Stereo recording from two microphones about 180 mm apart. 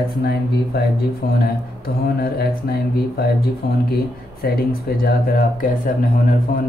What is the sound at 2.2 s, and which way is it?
Speech, 60° left (ahead or behind).